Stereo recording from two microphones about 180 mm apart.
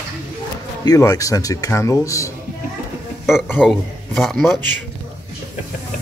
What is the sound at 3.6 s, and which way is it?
Speech, centre (ahead or behind).